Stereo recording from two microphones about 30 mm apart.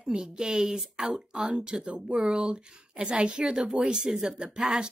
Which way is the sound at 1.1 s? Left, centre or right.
Right.